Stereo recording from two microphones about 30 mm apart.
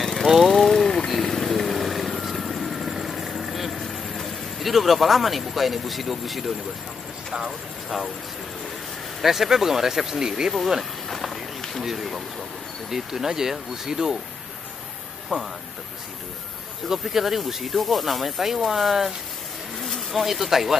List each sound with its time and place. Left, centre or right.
0.0 s vehicle: centre
9.2 s speech: centre
11.1 s run: centre
11.8 s speech: centre
15.3 s speech: right
16.9 s speech: centre